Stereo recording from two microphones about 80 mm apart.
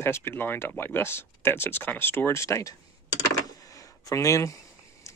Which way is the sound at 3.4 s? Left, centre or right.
Left.